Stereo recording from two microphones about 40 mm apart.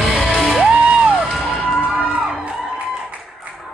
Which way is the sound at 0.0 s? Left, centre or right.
Centre.